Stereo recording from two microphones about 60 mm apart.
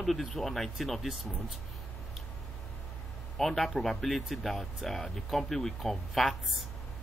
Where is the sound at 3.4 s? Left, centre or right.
Centre.